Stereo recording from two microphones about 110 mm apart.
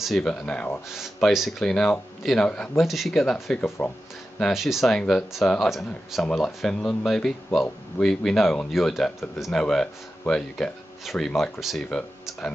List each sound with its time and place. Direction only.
0.0 s speech: 5° left (ahead or behind)
0.8 s speech: 5° right (ahead or behind)
2.8 s speech: centre (ahead or behind)
3.6 s speech: 25° left (ahead or behind)
4.4 s speech: 5° right (ahead or behind)